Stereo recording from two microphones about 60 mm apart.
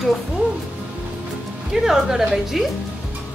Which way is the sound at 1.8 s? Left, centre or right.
Centre.